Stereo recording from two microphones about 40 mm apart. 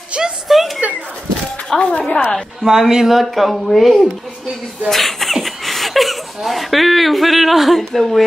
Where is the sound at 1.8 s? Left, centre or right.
Left.